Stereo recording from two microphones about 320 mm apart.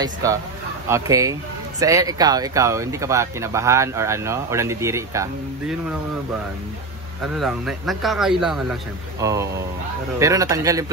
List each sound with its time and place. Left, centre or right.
0.0 s speech: centre
7.3 s speech: centre